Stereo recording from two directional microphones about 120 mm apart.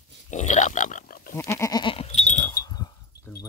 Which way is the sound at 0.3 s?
90° left.